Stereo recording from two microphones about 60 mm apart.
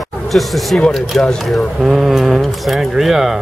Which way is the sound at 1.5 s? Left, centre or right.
Centre.